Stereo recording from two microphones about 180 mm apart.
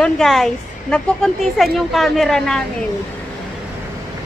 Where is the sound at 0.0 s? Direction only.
Centre (ahead or behind).